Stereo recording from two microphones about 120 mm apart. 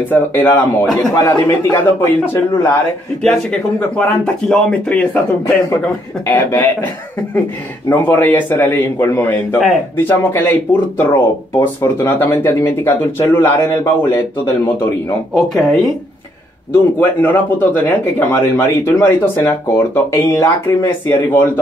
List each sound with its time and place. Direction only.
0.1 s a man's voice: 15° left (ahead or behind)
3.3 s speech: 10° left (ahead or behind)
7.9 s a man's voice: 15° left (ahead or behind)
15.3 s speech: centre (ahead or behind)
16.7 s a man's voice: 15° left (ahead or behind)